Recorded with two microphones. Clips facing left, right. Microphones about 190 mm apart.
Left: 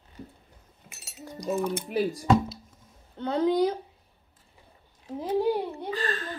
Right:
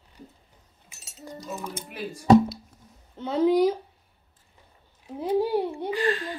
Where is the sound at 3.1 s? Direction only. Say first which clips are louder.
Right 3 dB; 5° right (ahead or behind).